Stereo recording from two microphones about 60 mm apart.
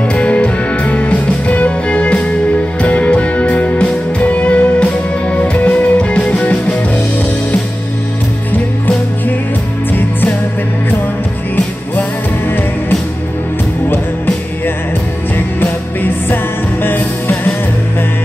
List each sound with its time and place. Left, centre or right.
0.1 s music: left